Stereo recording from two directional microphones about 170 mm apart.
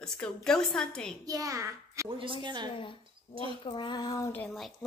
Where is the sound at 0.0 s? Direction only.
5° left (ahead or behind).